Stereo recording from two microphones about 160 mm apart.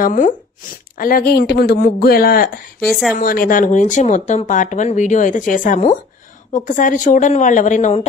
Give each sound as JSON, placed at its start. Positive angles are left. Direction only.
{"t": 0.0, "sound": "a man's voice", "side_deg": 55}
{"t": 2.8, "sound": "a woman's voice", "side_deg": 0}
{"t": 3.2, "sound": "speech", "side_deg": 60}